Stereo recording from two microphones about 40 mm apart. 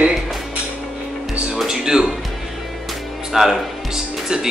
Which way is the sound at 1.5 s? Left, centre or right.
Centre.